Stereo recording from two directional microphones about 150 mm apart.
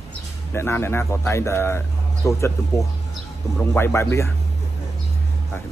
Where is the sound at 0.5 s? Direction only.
15° left (ahead or behind).